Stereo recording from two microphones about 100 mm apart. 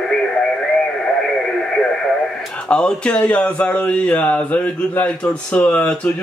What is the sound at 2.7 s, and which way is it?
Speech, 10° left (ahead or behind).